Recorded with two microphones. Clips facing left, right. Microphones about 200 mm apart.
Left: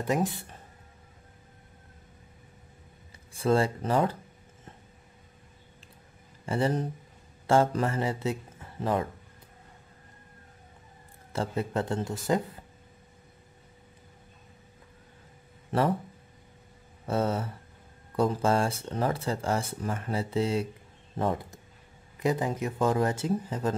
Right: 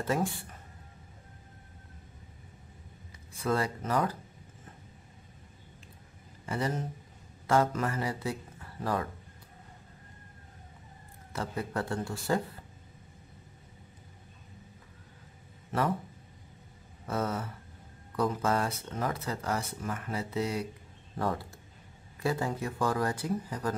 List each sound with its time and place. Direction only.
0.0 s speech: 20° left (ahead or behind)
3.3 s speech: 25° left (ahead or behind)
6.4 s speech: 30° left (ahead or behind)
11.3 s speech: 25° left (ahead or behind)
17.1 s speech: 30° left (ahead or behind)